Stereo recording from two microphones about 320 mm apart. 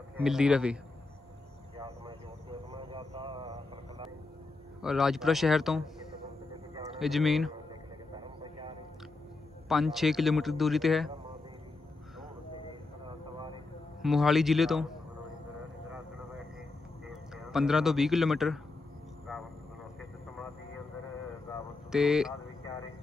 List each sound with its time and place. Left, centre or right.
0.2 s speech: centre
1.8 s a sound: centre
2.8 s vehicle: centre
4.8 s speech: centre
7.0 s speech: centre
9.7 s speech: centre
14.0 s speech: centre
17.5 s speech: centre
21.5 s a sound: centre